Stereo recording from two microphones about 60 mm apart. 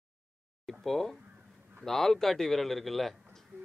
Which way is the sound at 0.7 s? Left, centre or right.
Centre.